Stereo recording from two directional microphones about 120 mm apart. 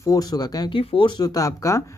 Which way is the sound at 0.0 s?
30° left (ahead or behind).